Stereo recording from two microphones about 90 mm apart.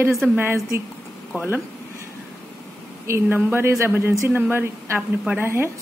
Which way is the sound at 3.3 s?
25° right (ahead or behind).